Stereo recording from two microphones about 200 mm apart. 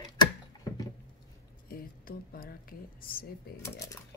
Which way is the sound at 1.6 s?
45° left (ahead or behind).